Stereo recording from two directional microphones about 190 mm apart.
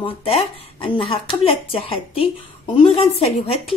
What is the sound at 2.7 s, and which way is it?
Speech, 35° left (ahead or behind).